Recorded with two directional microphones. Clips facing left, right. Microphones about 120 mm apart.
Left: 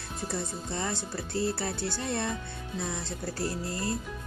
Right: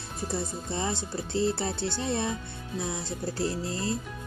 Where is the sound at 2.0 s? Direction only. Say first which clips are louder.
Right 2 dB; 15° right (ahead or behind).